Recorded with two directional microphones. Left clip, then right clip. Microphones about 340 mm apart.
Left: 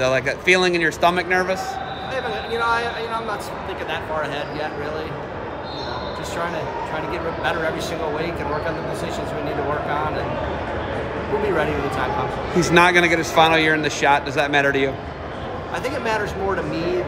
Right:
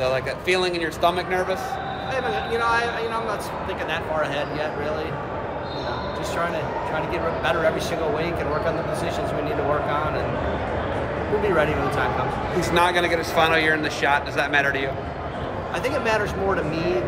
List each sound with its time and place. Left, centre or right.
0.0 s speech: left
2.1 s speech: centre
11.5 s speech: centre
12.5 s speech: left
15.8 s speech: centre